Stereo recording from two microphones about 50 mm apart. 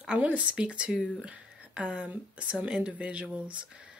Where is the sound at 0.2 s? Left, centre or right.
Right.